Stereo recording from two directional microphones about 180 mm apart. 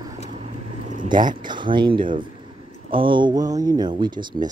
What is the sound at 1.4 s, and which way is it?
Speech, 25° right (ahead or behind).